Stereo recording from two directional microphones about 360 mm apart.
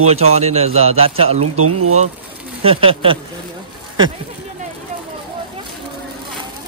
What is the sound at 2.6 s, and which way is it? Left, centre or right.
Speech, centre.